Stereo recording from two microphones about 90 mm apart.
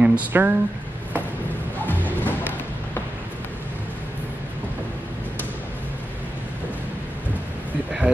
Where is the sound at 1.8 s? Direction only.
20° left (ahead or behind).